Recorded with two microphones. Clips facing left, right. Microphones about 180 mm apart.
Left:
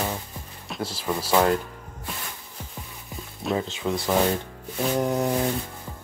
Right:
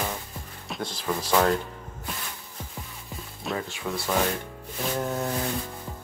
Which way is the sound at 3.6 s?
20° left (ahead or behind).